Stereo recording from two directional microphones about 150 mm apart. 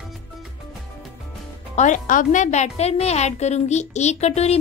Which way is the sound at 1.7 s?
55° left (ahead or behind).